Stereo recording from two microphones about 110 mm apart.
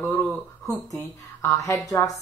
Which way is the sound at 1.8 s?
35° left (ahead or behind).